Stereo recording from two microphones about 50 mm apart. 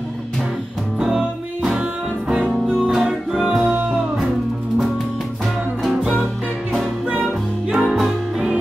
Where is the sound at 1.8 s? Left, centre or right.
Right.